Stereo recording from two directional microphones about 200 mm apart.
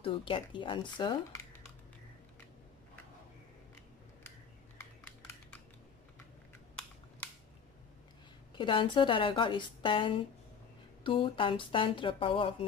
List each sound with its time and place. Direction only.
0.0 s a woman's voice: 25° left (ahead or behind)
8.5 s a woman's voice: 25° left (ahead or behind)